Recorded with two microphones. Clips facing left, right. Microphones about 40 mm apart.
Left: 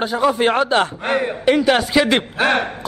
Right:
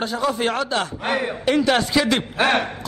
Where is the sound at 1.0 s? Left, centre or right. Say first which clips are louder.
Left 3 dB; centre.